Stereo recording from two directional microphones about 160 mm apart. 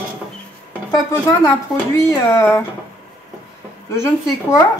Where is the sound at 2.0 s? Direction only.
20° left (ahead or behind).